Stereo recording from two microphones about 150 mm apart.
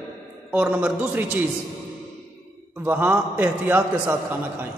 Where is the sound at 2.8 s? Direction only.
10° right (ahead or behind).